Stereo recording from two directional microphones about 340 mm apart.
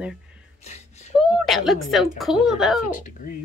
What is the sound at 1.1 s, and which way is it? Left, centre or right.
Speech, centre.